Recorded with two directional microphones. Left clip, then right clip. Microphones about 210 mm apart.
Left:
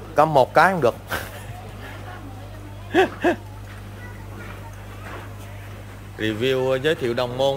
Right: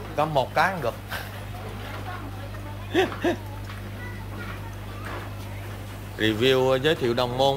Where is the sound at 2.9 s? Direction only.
10° left (ahead or behind).